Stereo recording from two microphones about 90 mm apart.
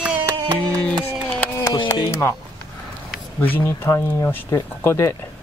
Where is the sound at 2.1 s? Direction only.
30° left (ahead or behind).